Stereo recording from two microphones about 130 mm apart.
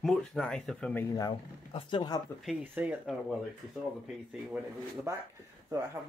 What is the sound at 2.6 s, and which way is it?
Speech, 10° right (ahead or behind).